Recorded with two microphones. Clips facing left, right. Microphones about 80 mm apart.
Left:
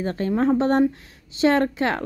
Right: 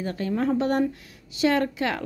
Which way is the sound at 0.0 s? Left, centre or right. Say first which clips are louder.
Left 4 dB; left.